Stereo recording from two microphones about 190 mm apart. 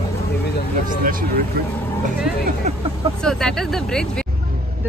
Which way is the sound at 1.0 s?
50° right (ahead or behind).